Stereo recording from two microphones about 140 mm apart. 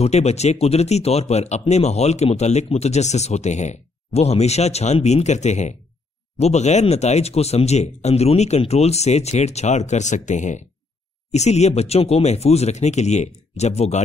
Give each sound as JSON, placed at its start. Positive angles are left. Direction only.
{"t": 0.0, "sound": "speech", "side_deg": 50}